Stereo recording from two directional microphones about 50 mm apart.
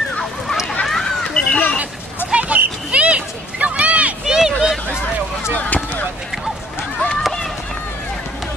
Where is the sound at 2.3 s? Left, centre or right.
Right.